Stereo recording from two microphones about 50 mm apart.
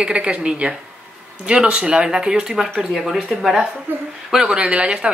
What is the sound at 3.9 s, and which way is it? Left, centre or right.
Speech, right.